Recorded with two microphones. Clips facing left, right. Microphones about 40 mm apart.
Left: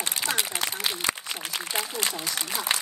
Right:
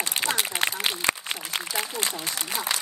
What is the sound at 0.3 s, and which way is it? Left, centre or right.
Speech, right.